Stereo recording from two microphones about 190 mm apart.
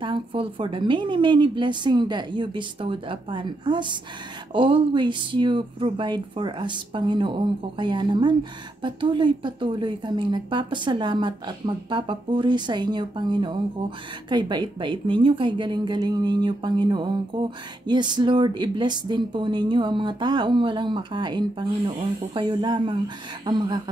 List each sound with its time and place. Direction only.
0.0 s a woman's voice: 30° right (ahead or behind)